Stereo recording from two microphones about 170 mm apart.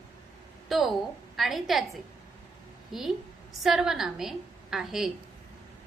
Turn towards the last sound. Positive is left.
turn(degrees=0)  # may be behind; listen again after turning